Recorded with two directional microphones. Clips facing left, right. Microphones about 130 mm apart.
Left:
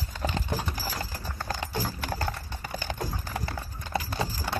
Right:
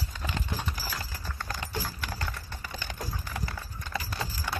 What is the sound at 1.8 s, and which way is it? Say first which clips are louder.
Clip-clop: left 5 dB; 40° left (ahead or behind).